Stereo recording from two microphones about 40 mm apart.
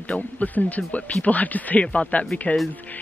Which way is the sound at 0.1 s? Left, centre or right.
Left.